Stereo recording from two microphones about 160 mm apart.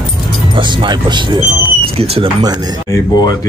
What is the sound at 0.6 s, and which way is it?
Speech, 30° right (ahead or behind).